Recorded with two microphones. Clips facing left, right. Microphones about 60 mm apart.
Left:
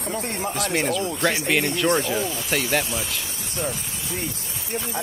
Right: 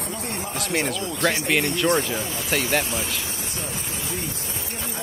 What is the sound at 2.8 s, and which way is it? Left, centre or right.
Speech, right.